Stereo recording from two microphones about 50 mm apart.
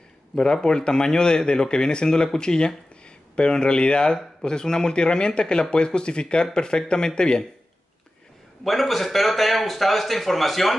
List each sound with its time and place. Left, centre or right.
0.4 s speech: centre
8.6 s speech: centre